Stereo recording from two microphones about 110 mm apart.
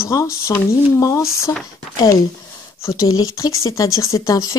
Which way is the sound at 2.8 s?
30° left (ahead or behind).